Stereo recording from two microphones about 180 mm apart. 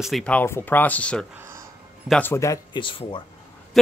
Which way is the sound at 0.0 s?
5° left (ahead or behind).